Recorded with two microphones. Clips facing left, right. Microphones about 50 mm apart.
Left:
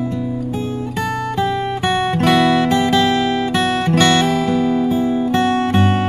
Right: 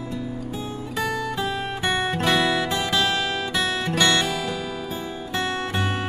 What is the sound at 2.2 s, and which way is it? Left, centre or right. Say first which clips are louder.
Music: left 9 dB; left.